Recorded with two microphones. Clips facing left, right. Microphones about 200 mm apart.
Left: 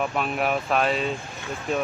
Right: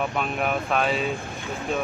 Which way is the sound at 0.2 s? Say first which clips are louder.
Left 1 dB; centre (ahead or behind).